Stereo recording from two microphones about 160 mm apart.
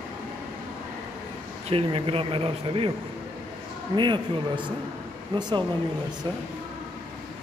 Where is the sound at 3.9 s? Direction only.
30° right (ahead or behind).